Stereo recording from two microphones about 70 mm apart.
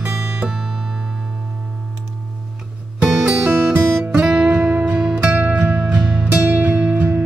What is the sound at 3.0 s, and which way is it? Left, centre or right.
Music, centre.